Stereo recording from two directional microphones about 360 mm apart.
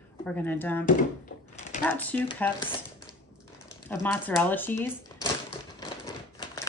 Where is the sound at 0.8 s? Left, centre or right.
Left.